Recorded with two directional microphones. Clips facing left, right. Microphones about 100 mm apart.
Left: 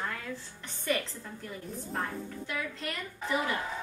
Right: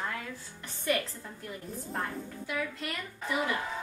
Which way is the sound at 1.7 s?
Centre (ahead or behind).